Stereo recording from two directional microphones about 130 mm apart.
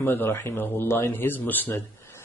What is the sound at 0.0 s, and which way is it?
Speech, 15° left (ahead or behind).